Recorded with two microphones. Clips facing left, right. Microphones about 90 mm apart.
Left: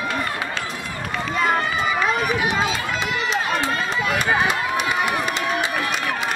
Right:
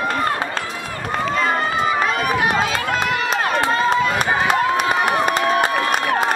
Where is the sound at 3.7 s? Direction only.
35° right (ahead or behind).